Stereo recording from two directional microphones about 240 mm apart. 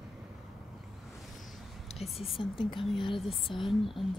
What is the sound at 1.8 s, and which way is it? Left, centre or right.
Whispering, left.